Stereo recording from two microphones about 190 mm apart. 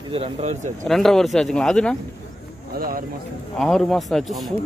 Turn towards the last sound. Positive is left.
turn(degrees=0)  # may be behind; listen again after turning